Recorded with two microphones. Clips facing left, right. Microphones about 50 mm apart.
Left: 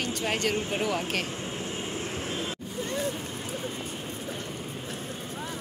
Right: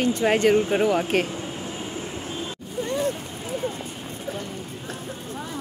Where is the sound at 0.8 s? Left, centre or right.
Right.